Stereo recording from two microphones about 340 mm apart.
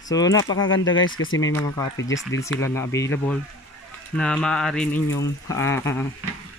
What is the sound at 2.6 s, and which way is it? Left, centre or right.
Speech, centre.